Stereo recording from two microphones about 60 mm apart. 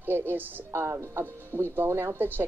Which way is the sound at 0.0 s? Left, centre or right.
Right.